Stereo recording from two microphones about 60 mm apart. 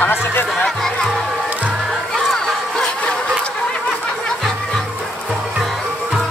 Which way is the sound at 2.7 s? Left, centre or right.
Centre.